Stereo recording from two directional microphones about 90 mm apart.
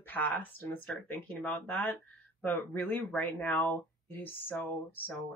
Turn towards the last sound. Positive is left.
turn(degrees=20)  # may be behind; listen again after turning